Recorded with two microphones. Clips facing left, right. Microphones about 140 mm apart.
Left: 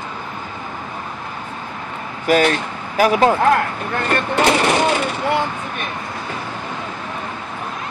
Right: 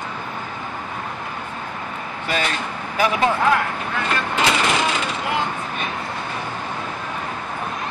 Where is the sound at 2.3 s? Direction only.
45° left (ahead or behind).